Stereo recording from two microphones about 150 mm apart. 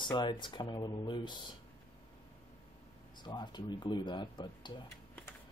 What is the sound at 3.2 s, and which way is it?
Speech, 30° left (ahead or behind).